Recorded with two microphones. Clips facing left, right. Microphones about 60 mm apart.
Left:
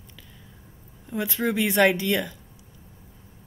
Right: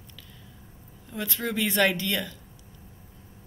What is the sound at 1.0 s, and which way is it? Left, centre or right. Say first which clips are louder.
Speech: left 5 dB; centre.